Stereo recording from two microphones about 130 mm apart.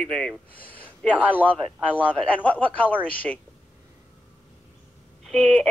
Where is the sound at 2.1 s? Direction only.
10° left (ahead or behind).